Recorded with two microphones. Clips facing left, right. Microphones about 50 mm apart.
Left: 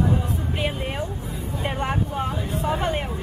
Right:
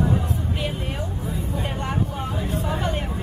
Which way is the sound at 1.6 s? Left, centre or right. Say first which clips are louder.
Left 4 dB; centre.